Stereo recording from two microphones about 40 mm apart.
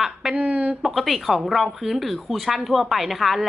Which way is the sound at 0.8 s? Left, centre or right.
Centre.